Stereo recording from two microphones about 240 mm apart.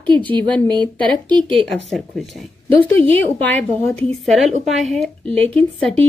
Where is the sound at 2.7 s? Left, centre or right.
Right.